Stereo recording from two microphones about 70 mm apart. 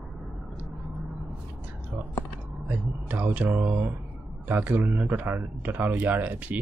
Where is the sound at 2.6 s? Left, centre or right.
Right.